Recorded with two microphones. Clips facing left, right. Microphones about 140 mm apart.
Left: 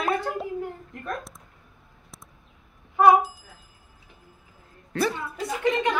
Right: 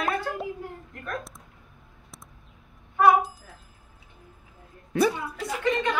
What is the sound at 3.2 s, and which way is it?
Bicycle bell, centre (ahead or behind).